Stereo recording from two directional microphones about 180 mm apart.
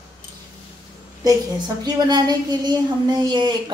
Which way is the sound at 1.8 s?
20° right (ahead or behind).